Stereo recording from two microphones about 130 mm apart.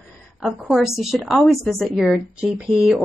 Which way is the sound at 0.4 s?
Centre (ahead or behind).